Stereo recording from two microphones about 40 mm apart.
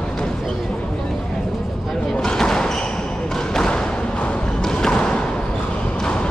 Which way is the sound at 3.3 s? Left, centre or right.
Centre.